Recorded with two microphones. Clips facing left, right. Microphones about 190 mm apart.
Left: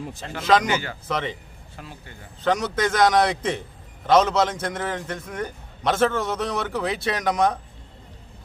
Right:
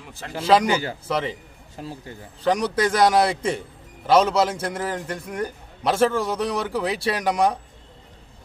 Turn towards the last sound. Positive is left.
turn(degrees=-10)  # may be behind; listen again after turning